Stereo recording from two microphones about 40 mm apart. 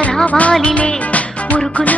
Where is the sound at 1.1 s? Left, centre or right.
Left.